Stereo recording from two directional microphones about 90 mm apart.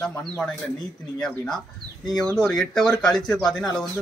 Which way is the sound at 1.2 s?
5° left (ahead or behind).